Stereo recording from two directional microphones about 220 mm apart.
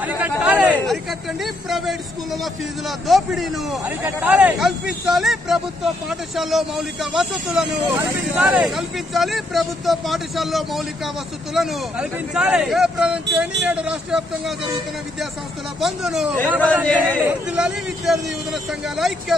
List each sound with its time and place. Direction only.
0.0 s chatter: 5° right (ahead or behind)
1.4 s speech: centre (ahead or behind)
15.8 s speech: centre (ahead or behind)